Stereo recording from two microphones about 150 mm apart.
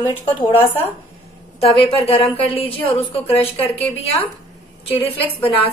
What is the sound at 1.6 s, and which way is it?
A woman's voice, 40° left (ahead or behind).